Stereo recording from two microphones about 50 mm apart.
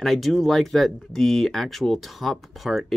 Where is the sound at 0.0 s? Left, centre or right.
Centre.